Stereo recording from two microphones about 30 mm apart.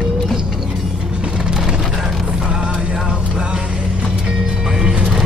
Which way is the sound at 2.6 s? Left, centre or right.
Right.